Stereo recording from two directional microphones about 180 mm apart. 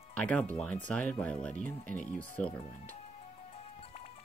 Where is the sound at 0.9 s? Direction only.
5° left (ahead or behind).